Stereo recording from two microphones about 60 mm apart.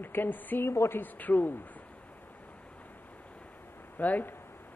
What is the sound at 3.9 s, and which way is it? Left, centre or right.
Speech, left.